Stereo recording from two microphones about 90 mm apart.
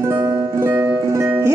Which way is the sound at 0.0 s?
35° right (ahead or behind).